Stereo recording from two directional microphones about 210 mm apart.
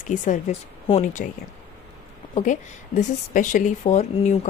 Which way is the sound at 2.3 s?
35° left (ahead or behind).